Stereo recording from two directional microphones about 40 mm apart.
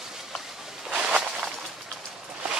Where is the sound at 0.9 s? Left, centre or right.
Centre.